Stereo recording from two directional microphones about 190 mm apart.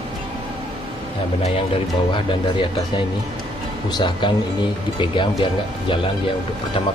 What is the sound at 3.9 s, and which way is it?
Speech, 25° left (ahead or behind).